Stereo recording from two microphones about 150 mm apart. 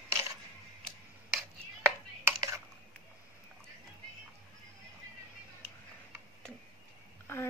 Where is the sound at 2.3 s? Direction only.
20° right (ahead or behind).